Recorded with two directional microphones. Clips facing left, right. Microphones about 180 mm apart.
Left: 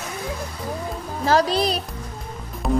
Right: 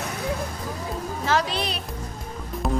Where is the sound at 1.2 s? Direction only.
35° left (ahead or behind).